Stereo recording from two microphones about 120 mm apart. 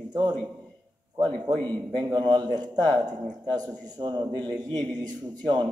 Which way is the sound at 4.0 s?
35° right (ahead or behind).